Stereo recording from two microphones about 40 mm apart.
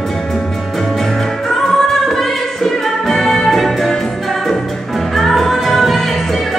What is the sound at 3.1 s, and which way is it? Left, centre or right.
Music, centre.